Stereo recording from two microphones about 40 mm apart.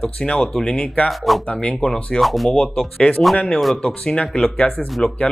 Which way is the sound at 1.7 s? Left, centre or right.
Left.